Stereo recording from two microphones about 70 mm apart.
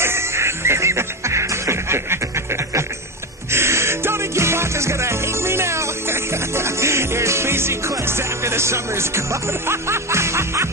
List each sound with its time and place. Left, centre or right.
0.0 s music: right